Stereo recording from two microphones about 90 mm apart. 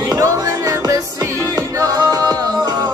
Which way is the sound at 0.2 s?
35° right (ahead or behind).